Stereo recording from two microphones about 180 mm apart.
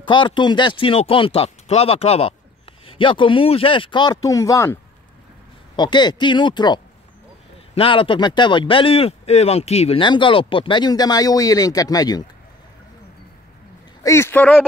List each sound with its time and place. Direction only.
0.0 s speech: 25° left (ahead or behind)
5.8 s speech: 25° left (ahead or behind)
14.0 s speech: 15° left (ahead or behind)